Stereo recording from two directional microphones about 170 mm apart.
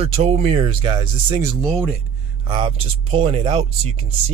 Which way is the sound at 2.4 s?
25° right (ahead or behind).